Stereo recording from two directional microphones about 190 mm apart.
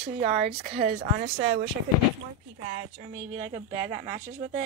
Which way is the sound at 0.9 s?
60° right (ahead or behind).